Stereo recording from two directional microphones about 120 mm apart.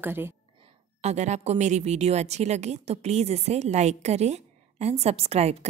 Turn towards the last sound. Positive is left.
turn(degrees=-60)  # may be behind; listen again after turning